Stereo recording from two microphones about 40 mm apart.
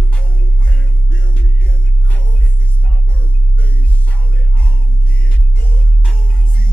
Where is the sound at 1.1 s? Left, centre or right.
Left.